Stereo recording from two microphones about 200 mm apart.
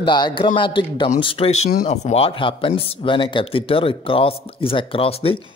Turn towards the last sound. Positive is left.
turn(degrees=30)  # may be behind; listen again after turning